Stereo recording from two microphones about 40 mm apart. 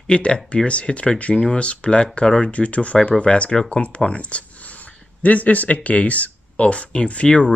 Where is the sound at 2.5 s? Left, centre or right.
Left.